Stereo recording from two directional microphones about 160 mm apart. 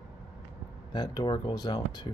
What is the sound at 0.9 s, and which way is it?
Speech, 25° left (ahead or behind).